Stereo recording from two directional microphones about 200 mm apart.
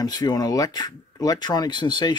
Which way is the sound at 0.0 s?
20° left (ahead or behind).